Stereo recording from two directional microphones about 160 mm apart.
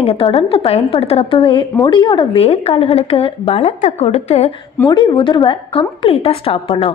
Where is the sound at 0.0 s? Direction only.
40° left (ahead or behind).